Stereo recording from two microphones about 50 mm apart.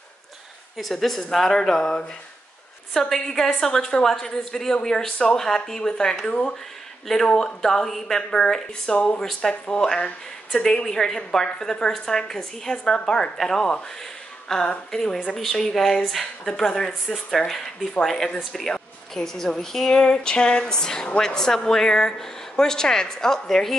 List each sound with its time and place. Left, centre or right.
0.7 s a woman's voice: centre
8.9 s speech: left
9.4 s a woman's voice: centre